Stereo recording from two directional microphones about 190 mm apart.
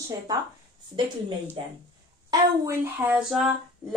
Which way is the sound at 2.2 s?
15° right (ahead or behind).